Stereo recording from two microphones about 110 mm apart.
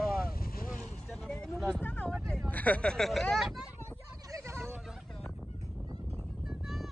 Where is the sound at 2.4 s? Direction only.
15° left (ahead or behind).